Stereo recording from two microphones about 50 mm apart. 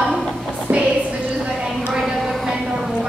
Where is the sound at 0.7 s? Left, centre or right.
Right.